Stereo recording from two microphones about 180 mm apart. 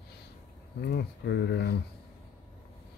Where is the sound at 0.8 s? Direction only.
65° left (ahead or behind).